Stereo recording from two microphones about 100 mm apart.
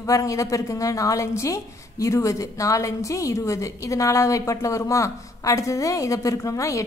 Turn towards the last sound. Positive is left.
turn(degrees=30)  # may be behind; listen again after turning